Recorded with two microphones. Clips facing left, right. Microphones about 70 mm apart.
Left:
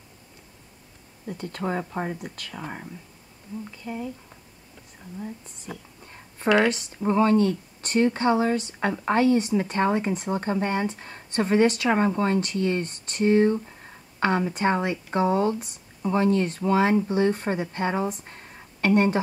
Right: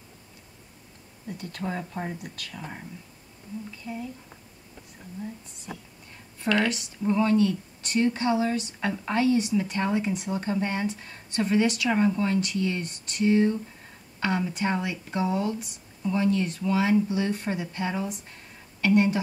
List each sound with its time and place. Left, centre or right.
1.4 s speech: left
3.8 s speech: left
6.7 s speech: left